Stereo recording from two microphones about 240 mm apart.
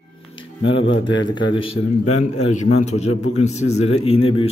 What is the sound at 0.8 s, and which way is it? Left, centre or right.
Speech, left.